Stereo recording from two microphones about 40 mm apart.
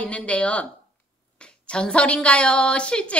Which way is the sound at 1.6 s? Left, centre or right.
Left.